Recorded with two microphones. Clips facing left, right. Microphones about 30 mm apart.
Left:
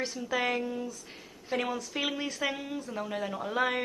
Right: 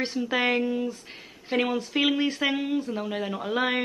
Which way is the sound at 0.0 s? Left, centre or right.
Right.